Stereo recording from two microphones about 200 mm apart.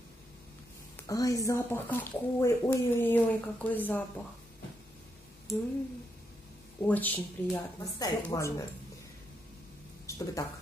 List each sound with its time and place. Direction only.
0.9 s speech: 15° left (ahead or behind)
6.8 s speech: 10° left (ahead or behind)
10.0 s speech: 15° left (ahead or behind)